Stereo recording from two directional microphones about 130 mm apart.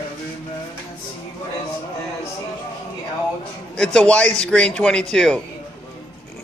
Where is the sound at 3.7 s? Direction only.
10° left (ahead or behind).